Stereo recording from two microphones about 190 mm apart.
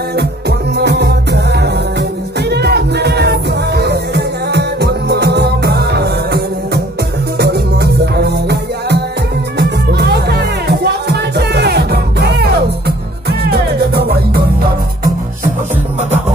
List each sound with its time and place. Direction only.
0.1 s music: 60° right (ahead or behind)